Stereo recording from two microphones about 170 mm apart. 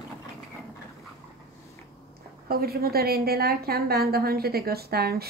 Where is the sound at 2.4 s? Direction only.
60° right (ahead or behind).